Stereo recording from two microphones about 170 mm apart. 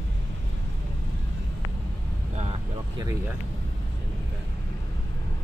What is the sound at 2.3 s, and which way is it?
Vehicle, 40° right (ahead or behind).